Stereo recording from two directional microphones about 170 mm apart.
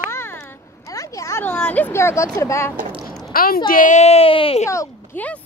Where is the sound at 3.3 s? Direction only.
60° left (ahead or behind); by 4.7 s 35° left (ahead or behind).